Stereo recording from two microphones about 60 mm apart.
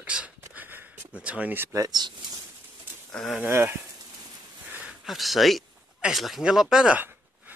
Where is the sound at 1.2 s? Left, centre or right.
Right.